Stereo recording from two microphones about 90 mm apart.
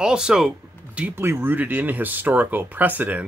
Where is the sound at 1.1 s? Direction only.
25° right (ahead or behind).